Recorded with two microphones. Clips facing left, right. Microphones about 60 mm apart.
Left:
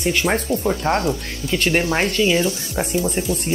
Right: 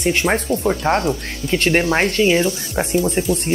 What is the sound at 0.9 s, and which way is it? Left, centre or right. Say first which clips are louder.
Speech: right 2 dB; right.